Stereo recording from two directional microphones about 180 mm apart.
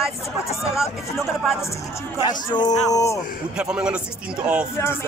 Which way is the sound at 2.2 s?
25° left (ahead or behind).